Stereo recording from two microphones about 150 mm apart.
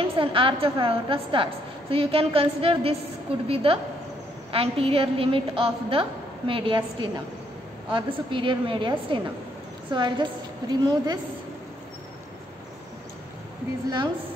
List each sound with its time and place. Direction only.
0.2 s a woman's voice: 35° right (ahead or behind)